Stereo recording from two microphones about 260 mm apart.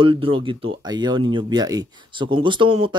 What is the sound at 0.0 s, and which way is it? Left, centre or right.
Speech, centre.